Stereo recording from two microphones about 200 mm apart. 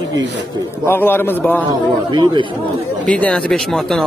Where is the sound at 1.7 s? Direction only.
20° right (ahead or behind).